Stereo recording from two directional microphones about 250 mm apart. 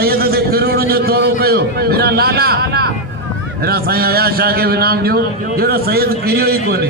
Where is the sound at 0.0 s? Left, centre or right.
Right.